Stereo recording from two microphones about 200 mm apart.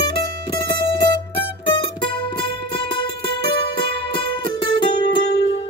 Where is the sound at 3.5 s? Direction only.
25° left (ahead or behind).